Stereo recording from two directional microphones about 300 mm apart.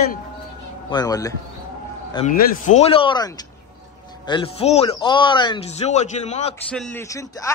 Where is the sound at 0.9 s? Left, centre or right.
Centre.